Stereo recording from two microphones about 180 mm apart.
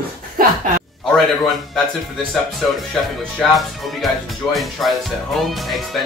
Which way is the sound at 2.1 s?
Centre (ahead or behind).